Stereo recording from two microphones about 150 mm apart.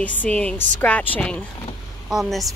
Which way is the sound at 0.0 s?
10° left (ahead or behind).